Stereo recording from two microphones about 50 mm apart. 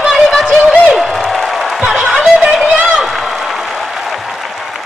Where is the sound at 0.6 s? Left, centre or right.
Right.